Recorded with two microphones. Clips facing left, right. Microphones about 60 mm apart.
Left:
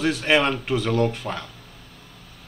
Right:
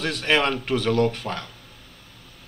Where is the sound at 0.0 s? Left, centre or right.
Centre.